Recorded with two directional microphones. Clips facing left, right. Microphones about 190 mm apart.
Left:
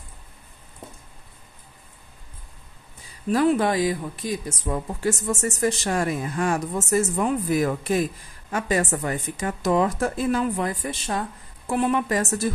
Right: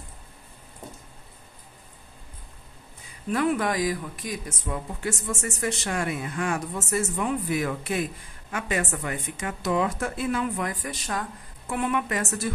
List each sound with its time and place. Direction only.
3.3 s speech: 30° left (ahead or behind)
4.6 s speech: 40° left (ahead or behind)